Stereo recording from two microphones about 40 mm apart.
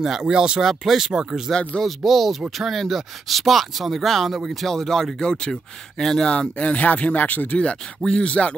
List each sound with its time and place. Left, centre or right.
0.2 s speech: right
0.7 s speech: centre
1.8 s speech: centre
6.6 s speech: left
8.0 s speech: left